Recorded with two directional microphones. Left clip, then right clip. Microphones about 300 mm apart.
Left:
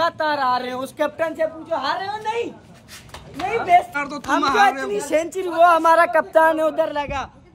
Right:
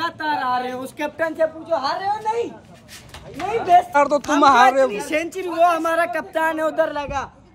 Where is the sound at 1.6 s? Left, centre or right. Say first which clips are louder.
Right 1 dB; left.